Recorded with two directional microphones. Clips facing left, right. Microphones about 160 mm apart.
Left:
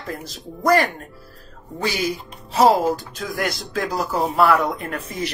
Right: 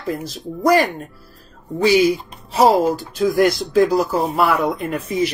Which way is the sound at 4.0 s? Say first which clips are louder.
Right 1 dB; 10° right (ahead or behind).